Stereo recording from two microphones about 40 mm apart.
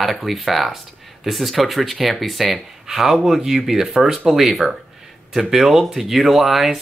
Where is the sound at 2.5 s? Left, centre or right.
Centre.